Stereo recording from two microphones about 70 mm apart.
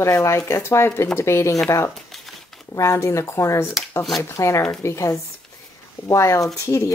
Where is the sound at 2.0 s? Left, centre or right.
Centre.